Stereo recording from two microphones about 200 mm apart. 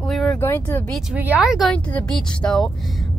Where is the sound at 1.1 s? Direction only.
10° right (ahead or behind).